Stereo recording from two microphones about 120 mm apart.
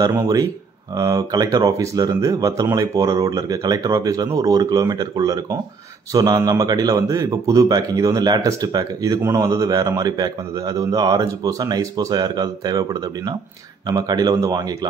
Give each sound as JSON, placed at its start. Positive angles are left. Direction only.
{"t": 0.1, "sound": "speech", "side_deg": -25}